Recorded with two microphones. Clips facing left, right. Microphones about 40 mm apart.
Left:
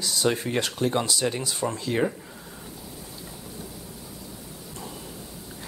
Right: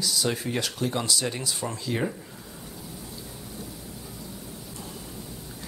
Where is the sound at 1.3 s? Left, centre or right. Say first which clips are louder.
Left 3 dB; centre.